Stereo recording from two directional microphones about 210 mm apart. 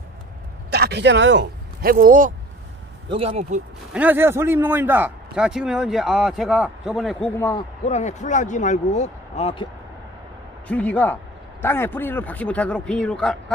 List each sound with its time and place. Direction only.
0.7 s speech: 50° right (ahead or behind)
3.1 s speech: 30° right (ahead or behind)
3.9 s a man's voice: 10° right (ahead or behind)
7.3 s a man's voice: 15° left (ahead or behind)
7.8 s speech: 35° left (ahead or behind)
10.7 s a man's voice: 5° left (ahead or behind)